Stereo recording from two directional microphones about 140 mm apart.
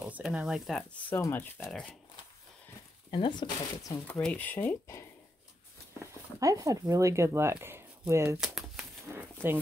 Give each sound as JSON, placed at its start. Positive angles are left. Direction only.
{"t": 0.0, "sound": "speech", "side_deg": -5}
{"t": 1.1, "sound": "speech", "side_deg": 15}
{"t": 3.1, "sound": "speech", "side_deg": 35}
{"t": 4.1, "sound": "speech", "side_deg": 10}
{"t": 6.4, "sound": "speech", "side_deg": -25}
{"t": 8.4, "sound": "a sound", "side_deg": 0}
{"t": 9.0, "sound": "speech", "side_deg": -15}